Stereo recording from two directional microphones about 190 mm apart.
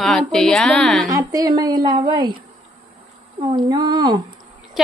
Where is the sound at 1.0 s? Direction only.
20° right (ahead or behind).